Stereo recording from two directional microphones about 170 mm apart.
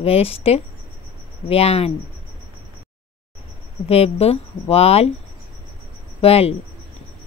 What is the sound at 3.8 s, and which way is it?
A woman's voice, 35° left (ahead or behind).